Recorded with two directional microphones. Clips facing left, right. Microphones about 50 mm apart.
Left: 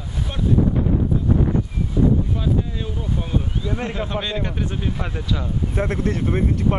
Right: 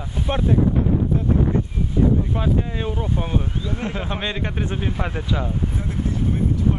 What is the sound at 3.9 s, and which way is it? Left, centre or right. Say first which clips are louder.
Speech: left 1 dB; centre.